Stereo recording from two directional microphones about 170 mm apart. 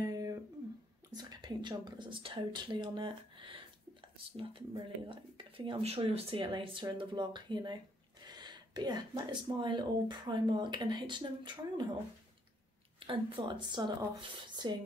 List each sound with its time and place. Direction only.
0.0 s a sound: 20° right (ahead or behind)
1.1 s speech: 25° right (ahead or behind)
13.0 s speech: 30° right (ahead or behind)
14.5 s rub: 25° right (ahead or behind)